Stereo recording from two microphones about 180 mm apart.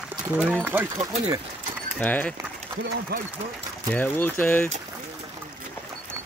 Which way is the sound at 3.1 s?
60° right (ahead or behind).